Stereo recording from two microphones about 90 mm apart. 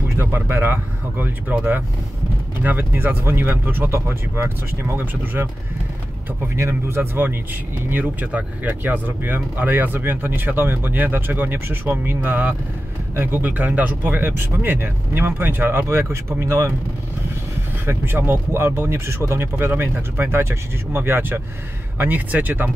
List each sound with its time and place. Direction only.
0.2 s speech: 25° right (ahead or behind)
17.8 s speech: 25° right (ahead or behind)